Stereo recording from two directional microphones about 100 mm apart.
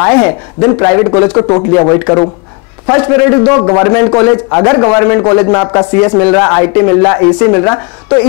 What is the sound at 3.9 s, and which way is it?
A man's voice, 15° left (ahead or behind).